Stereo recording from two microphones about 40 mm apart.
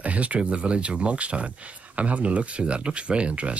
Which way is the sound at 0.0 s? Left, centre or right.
Right.